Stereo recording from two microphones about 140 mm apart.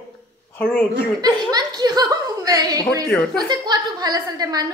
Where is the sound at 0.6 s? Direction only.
10° left (ahead or behind).